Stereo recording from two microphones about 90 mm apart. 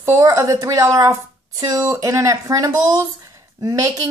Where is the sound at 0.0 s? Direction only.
35° right (ahead or behind).